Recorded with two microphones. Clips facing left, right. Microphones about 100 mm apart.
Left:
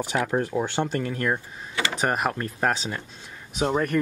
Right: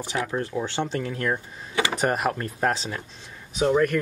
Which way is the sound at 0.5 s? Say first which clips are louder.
Even; 15° left (ahead or behind).